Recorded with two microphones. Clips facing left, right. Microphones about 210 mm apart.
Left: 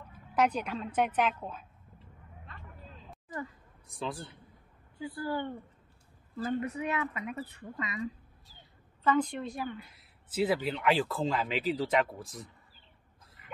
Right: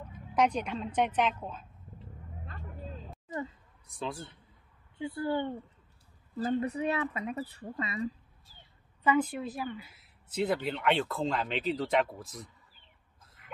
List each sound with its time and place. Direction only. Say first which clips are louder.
0.3 s a woman's voice: right 1 dB; 5° left (ahead or behind)
2.4 s vehicle: right 7 dB; 35° right (ahead or behind)
3.3 s speech: right 3 dB; 25° right (ahead or behind)
3.9 s speech: even; centre (ahead or behind)
4.9 s speech: right 3 dB; 25° right (ahead or behind)
6.3 s speech: right 2 dB; 35° right (ahead or behind)
9.0 s speech: right 1 dB; 10° right (ahead or behind)
13.4 s a sound: even; centre (ahead or behind)